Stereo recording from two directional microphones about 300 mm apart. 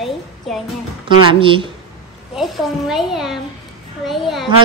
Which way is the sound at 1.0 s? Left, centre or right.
Centre.